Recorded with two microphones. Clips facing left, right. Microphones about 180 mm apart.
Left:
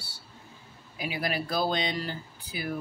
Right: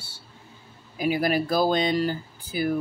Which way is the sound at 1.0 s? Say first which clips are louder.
Right 8 dB; 45° right (ahead or behind).